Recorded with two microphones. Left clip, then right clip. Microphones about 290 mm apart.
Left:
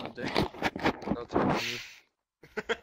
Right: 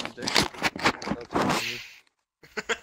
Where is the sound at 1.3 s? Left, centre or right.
Right.